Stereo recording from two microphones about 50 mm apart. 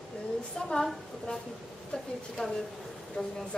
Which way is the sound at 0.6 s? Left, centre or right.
Centre.